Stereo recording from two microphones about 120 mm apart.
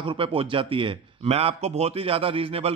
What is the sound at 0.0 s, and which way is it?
A man's voice, 45° right (ahead or behind).